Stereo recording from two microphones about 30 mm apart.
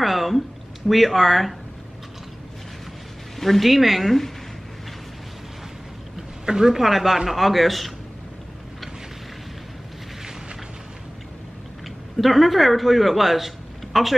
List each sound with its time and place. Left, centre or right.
0.0 s speech: centre
3.3 s speech: centre
6.1 s a sound: right
6.7 s speech: centre
12.2 s speech: centre